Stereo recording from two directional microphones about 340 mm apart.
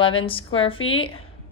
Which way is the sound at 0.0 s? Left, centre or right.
Centre.